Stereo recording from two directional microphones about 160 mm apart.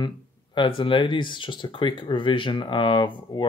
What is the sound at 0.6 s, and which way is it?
Speech, 30° left (ahead or behind).